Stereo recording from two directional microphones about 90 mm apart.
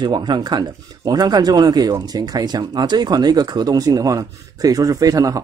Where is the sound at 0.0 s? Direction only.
55° right (ahead or behind).